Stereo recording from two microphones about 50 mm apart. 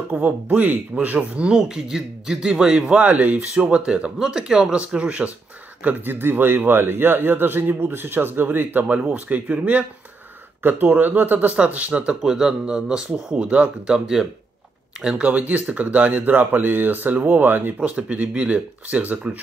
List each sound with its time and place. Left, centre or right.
0.1 s speech: right
1.6 s speech: centre
2.8 s speech: right
4.2 s speech: centre
4.7 s speech: right
5.9 s a man's voice: right
8.8 s speech: right
10.6 s speech: right
12.2 s speech: centre
13.4 s speech: right
15.3 s speech: right
17.7 s speech: right